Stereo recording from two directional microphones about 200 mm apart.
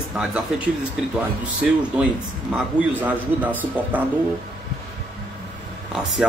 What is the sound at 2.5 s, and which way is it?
A man's voice, 10° right (ahead or behind).